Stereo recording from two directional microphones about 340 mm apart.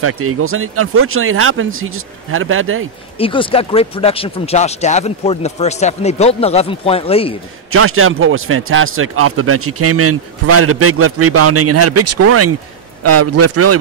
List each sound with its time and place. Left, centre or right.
0.0 s speech: right
3.2 s speech: centre
7.7 s a man's voice: right